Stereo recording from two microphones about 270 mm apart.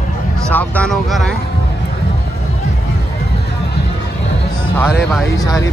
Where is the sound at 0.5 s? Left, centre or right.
Centre.